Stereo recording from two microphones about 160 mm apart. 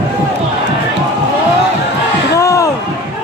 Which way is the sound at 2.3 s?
20° left (ahead or behind).